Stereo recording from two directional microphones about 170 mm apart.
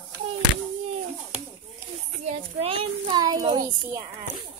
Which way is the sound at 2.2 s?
40° right (ahead or behind).